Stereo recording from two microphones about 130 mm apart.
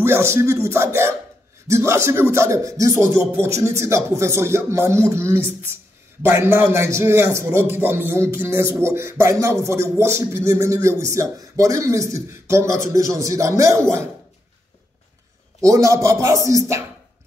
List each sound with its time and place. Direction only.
0.0 s speech: 20° right (ahead or behind)
15.6 s speech: 25° right (ahead or behind)